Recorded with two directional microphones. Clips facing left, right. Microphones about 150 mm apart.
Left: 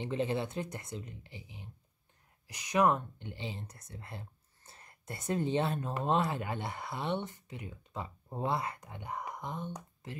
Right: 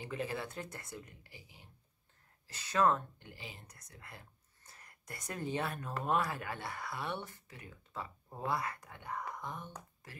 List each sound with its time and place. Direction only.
0.0 s speech: 25° left (ahead or behind)